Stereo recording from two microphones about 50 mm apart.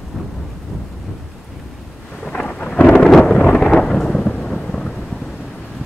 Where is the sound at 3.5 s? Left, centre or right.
Centre.